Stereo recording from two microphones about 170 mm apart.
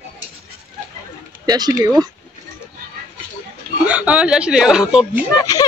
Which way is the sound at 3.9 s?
10° right (ahead or behind).